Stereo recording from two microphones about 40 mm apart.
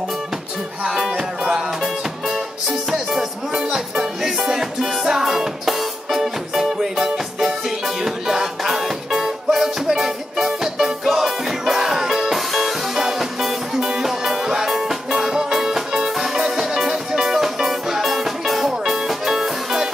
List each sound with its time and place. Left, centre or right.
0.9 s music: centre
1.7 s music: centre